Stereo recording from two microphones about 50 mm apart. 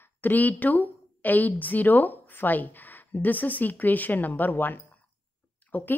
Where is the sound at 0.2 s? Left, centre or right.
Left.